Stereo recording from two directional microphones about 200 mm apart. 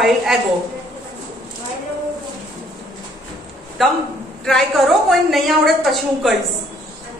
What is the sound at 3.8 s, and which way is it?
A woman's voice, centre (ahead or behind).